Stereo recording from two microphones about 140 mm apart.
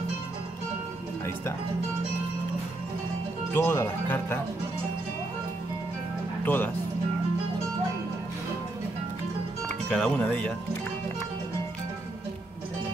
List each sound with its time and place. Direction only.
3.5 s speech: 15° left (ahead or behind)
6.4 s speech: 15° left (ahead or behind)
9.8 s speech: 10° left (ahead or behind)